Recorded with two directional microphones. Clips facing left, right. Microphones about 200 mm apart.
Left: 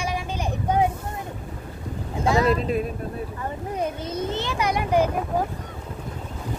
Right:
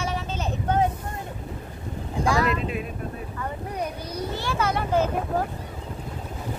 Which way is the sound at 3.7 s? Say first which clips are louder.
Left 7 dB; 25° left (ahead or behind).